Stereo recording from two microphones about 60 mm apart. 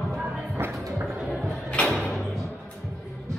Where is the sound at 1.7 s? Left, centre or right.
Centre.